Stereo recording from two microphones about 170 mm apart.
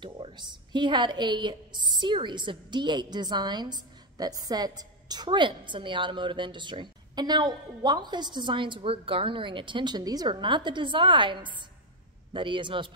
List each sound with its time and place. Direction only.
0.0 s a woman's voice: 25° right (ahead or behind)